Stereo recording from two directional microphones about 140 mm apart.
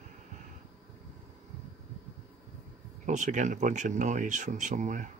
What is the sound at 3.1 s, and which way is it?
Speech, 60° right (ahead or behind).